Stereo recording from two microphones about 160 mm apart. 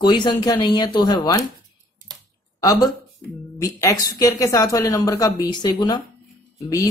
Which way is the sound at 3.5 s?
20° left (ahead or behind).